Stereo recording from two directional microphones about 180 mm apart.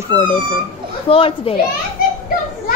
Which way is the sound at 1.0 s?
30° left (ahead or behind).